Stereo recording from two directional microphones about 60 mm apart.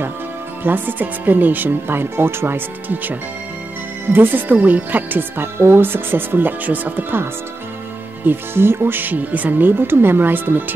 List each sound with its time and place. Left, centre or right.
0.7 s speech: right
8.3 s speech: right